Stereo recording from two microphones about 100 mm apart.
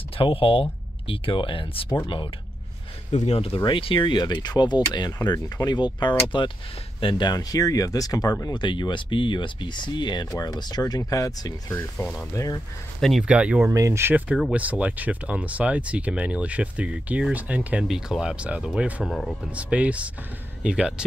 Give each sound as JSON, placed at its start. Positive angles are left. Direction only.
{"t": 0.2, "sound": "speech", "side_deg": 65}
{"t": 3.3, "sound": "speech", "side_deg": 75}
{"t": 6.3, "sound": "speech", "side_deg": 55}
{"t": 8.5, "sound": "speech", "side_deg": 50}
{"t": 11.7, "sound": "speech", "side_deg": 20}
{"t": 12.2, "sound": "speech", "side_deg": 35}
{"t": 13.2, "sound": "speech", "side_deg": -15}
{"t": 13.7, "sound": "speech", "side_deg": -30}
{"t": 14.5, "sound": "speech", "side_deg": -15}
{"t": 19.0, "sound": "speech", "side_deg": 5}
{"t": 19.5, "sound": "speech", "side_deg": -15}